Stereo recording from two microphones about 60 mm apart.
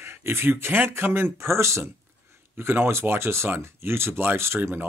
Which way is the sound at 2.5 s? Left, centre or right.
Right.